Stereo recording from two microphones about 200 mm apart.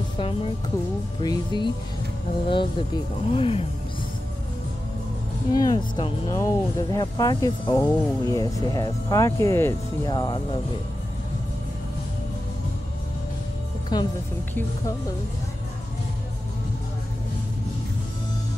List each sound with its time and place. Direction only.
1.2 s speech: 20° left (ahead or behind)
5.5 s speech: 20° left (ahead or behind)
13.9 s speech: 20° left (ahead or behind)